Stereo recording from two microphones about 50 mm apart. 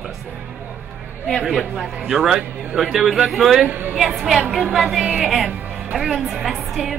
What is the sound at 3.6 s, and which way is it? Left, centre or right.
Speech, right.